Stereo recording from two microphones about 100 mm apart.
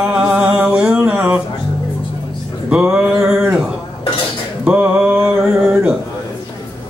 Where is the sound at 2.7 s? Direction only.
10° right (ahead or behind).